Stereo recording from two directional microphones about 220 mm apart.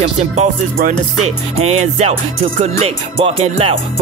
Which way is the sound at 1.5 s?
30° right (ahead or behind).